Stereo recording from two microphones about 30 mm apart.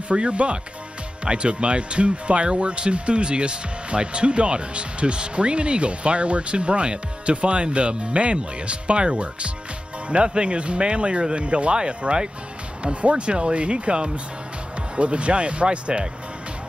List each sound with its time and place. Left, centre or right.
0.1 s speech: right